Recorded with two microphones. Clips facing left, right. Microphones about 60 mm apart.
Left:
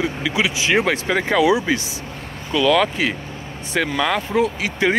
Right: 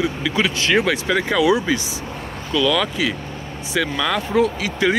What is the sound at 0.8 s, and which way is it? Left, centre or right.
Speech, left.